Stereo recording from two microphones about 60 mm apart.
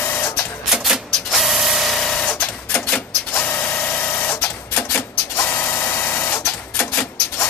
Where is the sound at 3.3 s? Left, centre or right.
Left.